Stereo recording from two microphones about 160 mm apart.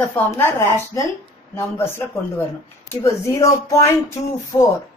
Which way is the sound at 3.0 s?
20° left (ahead or behind).